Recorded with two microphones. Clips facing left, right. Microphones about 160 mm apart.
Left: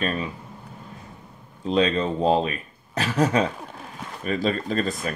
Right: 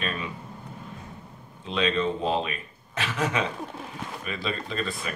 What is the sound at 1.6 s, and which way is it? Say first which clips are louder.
Speech: left 4 dB; 40° left (ahead or behind).